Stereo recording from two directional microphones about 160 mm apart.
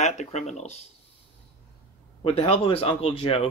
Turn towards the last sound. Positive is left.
turn(degrees=35)  # may be behind; listen again after turning